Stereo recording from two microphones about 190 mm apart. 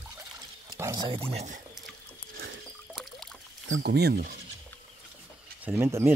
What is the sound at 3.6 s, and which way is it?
Speech, 75° right (ahead or behind).